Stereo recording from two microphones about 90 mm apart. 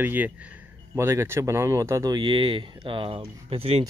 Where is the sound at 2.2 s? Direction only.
65° right (ahead or behind); by 3.7 s 90° right.